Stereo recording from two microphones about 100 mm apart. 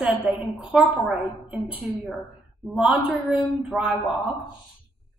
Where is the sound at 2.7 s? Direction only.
10° right (ahead or behind).